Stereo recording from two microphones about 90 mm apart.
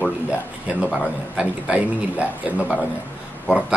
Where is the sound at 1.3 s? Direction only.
10° right (ahead or behind).